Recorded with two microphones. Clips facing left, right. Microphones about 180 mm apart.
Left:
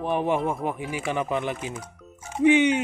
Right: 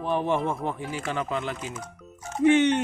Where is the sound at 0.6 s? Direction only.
15° left (ahead or behind).